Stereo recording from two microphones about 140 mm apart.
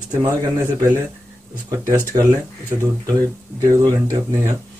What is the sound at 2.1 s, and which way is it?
Speech, 40° right (ahead or behind).